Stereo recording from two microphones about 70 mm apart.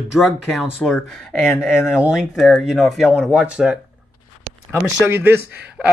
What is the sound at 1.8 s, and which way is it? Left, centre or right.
Speech, left.